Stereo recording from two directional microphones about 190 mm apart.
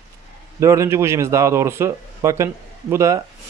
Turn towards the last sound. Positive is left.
turn(degrees=-15)  # may be behind; listen again after turning